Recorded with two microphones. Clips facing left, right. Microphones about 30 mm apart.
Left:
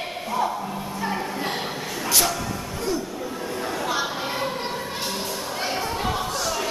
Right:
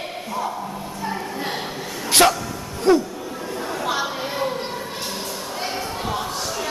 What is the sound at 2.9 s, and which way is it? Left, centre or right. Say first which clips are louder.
Music: right 11 dB; right.